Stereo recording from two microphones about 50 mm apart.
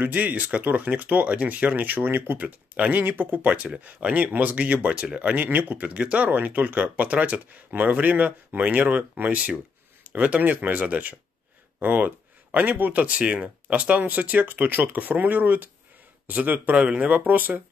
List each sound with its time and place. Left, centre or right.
0.0 s speech: right
2.4 s speech: right
5.4 s speech: right
5.9 s speech: right
13.0 s speech: right